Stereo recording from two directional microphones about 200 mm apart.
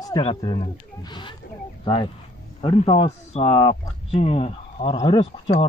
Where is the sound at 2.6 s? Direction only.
30° left (ahead or behind).